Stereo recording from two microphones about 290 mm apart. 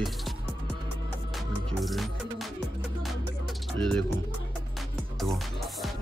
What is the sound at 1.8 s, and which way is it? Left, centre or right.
Music, centre.